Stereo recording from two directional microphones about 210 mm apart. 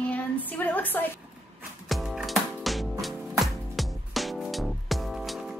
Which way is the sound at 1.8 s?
Centre (ahead or behind).